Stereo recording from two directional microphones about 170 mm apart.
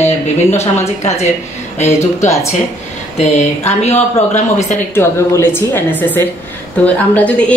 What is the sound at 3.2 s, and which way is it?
Speech, 40° left (ahead or behind).